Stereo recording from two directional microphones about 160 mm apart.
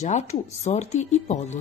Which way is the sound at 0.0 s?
45° left (ahead or behind).